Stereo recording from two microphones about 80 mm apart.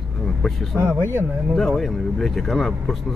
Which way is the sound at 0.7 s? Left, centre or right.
Right.